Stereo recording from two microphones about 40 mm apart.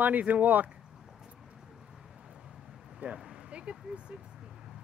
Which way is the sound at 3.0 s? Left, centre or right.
Right.